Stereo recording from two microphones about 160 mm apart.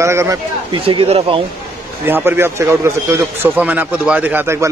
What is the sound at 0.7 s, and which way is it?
Speech, 35° right (ahead or behind).